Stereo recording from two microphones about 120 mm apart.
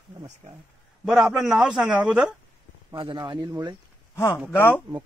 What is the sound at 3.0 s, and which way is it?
Speech, 40° right (ahead or behind).